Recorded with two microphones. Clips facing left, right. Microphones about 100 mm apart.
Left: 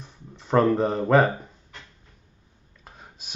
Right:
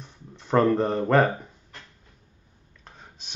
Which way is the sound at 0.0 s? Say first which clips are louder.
Left 1 dB; centre (ahead or behind).